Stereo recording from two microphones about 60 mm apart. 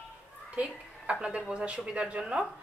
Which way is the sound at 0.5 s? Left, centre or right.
Centre.